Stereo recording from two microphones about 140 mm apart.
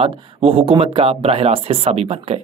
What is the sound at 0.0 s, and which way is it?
Speech, 40° right (ahead or behind).